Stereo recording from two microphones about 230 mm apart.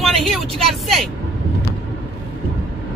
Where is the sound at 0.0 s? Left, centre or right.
Centre.